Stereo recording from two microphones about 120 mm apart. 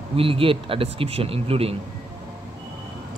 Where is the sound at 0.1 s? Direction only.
50° right (ahead or behind).